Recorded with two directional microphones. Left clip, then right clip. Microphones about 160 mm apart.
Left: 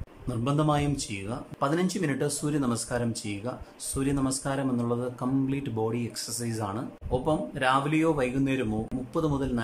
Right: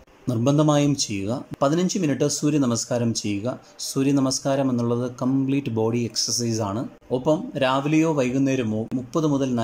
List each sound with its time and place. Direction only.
0.3 s speech: 20° right (ahead or behind)